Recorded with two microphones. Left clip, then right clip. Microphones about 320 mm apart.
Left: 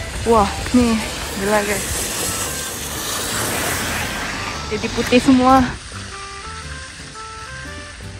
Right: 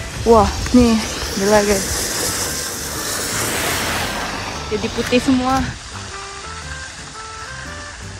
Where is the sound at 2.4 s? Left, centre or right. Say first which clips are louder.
Right 2 dB; left.